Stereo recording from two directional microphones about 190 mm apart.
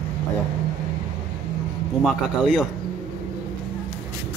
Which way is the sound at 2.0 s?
Centre (ahead or behind).